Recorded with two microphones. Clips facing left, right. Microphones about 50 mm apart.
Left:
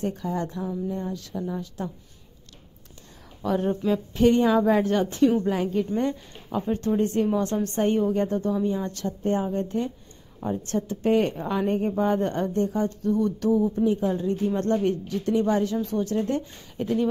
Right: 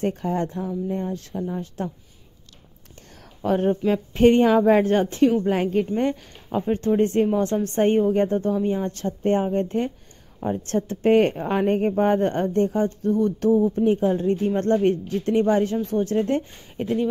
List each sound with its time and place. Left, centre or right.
0.0 s speech: right
3.4 s speech: right
6.6 s speech: right